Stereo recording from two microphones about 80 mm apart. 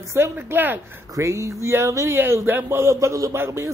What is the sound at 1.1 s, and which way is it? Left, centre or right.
A man's voice, right.